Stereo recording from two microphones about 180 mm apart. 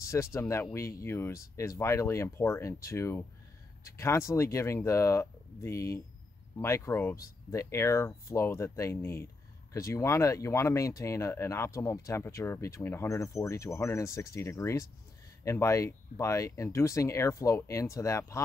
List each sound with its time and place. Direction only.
0.0 s speech: 15° left (ahead or behind)